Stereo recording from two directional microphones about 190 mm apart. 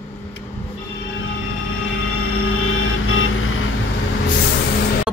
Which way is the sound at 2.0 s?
90° left.